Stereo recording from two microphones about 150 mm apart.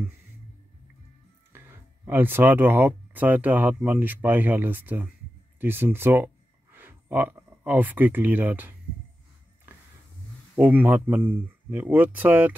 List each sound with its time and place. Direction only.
1.5 s speech: 15° right (ahead or behind)
10.5 s speech: 10° right (ahead or behind)